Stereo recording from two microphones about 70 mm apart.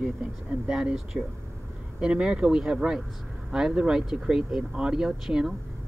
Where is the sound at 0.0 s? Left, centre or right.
Centre.